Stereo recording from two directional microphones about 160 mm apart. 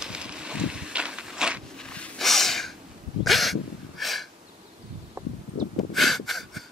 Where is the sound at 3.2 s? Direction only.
Centre (ahead or behind).